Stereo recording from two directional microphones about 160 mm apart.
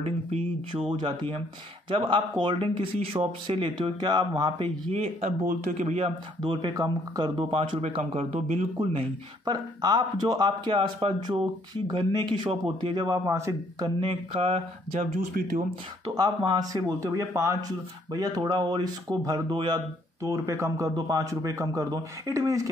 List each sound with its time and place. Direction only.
0.0 s speech: 40° right (ahead or behind)
5.2 s speech: 60° right (ahead or behind)
5.8 s speech: 40° right (ahead or behind)
6.4 s speech: 25° right (ahead or behind); by 15.2 s 45° right (ahead or behind)
16.2 s speech: 25° right (ahead or behind)